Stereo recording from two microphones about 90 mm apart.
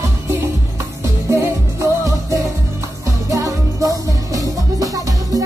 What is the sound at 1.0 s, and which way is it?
Music, 30° right (ahead or behind).